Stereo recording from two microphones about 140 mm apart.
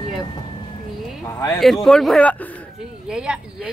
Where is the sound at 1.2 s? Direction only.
25° left (ahead or behind).